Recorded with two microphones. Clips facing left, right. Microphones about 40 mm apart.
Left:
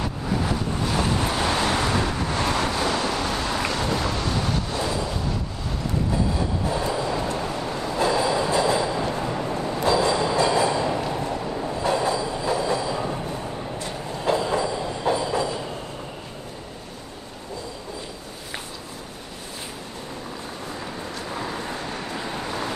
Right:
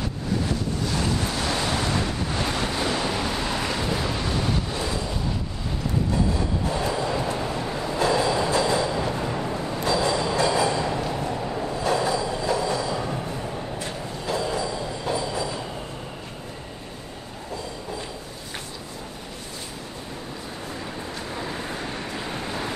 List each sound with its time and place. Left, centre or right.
0.0 s waves: centre
3.1 s a sound: centre
3.7 s boat: centre
4.1 s waves: centre
4.4 s vehicle: centre
6.3 s train: centre
6.8 s train: centre
7.3 s vehicle: centre
9.2 s a sound: centre
10.0 s train: centre
11.8 s train: left
14.2 s train: left
21.5 s vehicle: centre